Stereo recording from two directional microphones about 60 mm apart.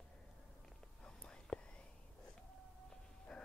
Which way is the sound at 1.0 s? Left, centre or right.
Centre.